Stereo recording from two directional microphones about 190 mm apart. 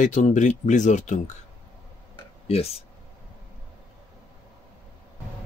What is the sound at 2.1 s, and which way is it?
Tick-tock, 30° left (ahead or behind).